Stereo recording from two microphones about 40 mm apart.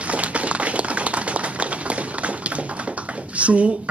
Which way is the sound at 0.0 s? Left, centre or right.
Right.